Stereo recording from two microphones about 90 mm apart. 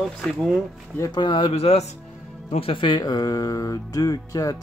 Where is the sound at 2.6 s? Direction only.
70° left (ahead or behind).